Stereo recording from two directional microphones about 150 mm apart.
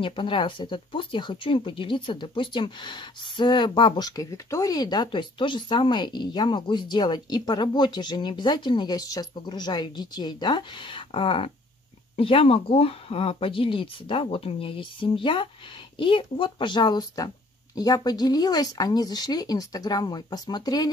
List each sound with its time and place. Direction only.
0.0 s speech: 35° left (ahead or behind)